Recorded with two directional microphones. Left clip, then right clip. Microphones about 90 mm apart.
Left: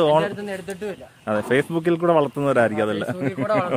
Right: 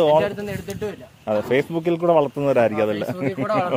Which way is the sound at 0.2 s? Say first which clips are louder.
Right 2 dB; 30° left (ahead or behind).